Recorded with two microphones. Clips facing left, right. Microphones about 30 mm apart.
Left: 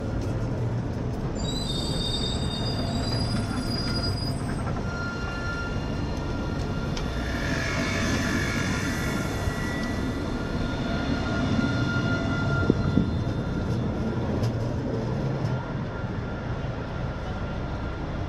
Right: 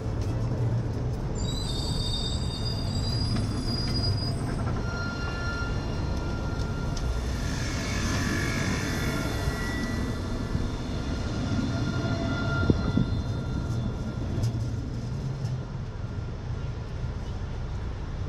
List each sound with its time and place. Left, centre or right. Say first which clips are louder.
7.4 s vehicle: left 6 dB; left
7.7 s vehicle: left 2 dB; centre
10.9 s vehicle: left 6 dB; left